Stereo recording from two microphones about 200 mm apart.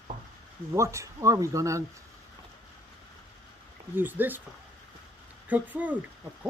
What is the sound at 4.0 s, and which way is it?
Speech, 10° right (ahead or behind).